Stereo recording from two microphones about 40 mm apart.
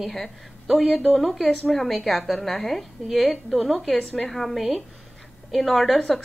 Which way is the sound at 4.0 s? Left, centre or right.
Left.